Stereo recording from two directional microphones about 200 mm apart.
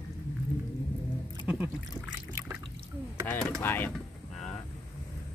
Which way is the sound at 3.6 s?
10° left (ahead or behind).